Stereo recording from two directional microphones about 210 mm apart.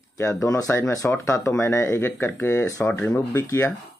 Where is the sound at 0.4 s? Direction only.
15° left (ahead or behind).